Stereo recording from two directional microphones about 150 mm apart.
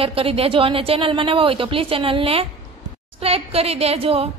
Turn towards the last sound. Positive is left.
turn(degrees=-40)  # may be behind; listen again after turning